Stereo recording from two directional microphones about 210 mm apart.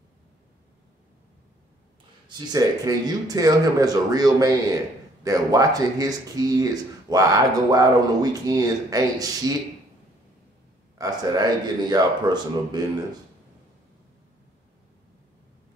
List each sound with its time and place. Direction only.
2.2 s speech: 20° right (ahead or behind)
11.0 s speech: 20° right (ahead or behind)